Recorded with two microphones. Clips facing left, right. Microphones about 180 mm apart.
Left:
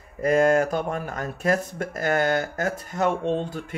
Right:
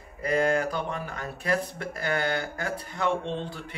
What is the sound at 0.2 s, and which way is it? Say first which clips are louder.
Speech: left 6 dB; 45° left (ahead or behind).